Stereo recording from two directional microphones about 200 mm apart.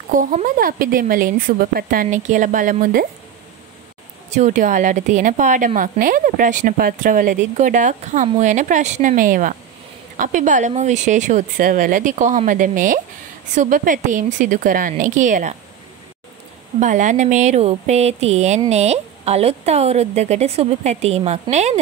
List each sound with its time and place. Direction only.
0.1 s speech: 40° right (ahead or behind)
4.3 s a woman's voice: 40° right (ahead or behind)
16.8 s a woman's voice: 40° right (ahead or behind)